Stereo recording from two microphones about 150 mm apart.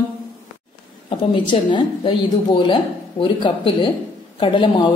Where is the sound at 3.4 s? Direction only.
30° left (ahead or behind).